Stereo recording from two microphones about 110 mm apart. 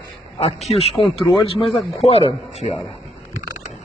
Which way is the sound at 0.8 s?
60° left (ahead or behind).